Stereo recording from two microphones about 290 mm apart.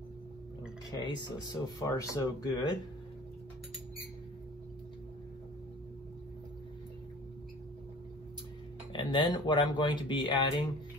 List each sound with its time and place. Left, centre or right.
0.8 s speech: centre
8.9 s speech: centre